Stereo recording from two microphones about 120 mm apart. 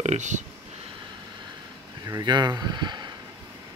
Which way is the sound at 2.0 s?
35° right (ahead or behind).